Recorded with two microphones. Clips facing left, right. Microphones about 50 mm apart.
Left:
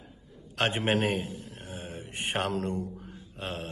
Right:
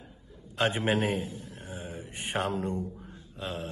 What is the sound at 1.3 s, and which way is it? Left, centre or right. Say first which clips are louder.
Mantra: even; left.